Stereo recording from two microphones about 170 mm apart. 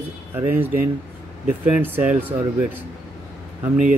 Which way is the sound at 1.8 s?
10° right (ahead or behind).